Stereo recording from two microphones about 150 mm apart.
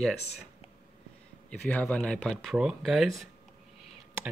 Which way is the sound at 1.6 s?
10° left (ahead or behind).